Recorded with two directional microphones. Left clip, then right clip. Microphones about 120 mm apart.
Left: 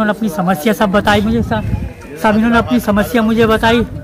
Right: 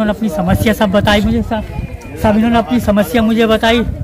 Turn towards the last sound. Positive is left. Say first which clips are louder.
# even
turn(degrees=10)  # may be behind; listen again after turning